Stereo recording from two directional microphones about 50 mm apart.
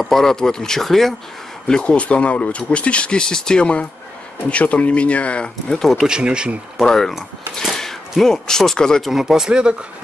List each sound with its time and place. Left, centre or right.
0.0 s speech: centre
1.7 s speech: left
6.0 s speech: centre
6.8 s speech: centre
7.7 s a sound: centre
8.1 s speech: centre
9.0 s speech: centre